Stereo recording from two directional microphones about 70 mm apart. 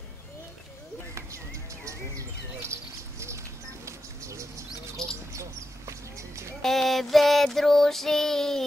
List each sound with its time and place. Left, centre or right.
2.7 s bird: right
5.3 s a sound: right
6.6 s child singing: centre